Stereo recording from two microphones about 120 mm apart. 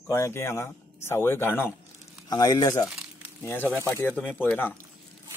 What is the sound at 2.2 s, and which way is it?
Speech, 35° left (ahead or behind).